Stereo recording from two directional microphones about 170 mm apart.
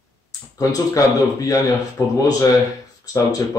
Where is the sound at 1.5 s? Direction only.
15° left (ahead or behind).